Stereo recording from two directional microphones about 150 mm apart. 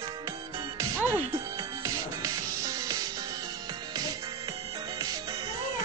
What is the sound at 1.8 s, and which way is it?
Music, 25° right (ahead or behind).